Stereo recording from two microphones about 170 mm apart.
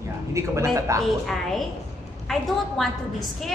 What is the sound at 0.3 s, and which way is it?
Speech, 15° right (ahead or behind).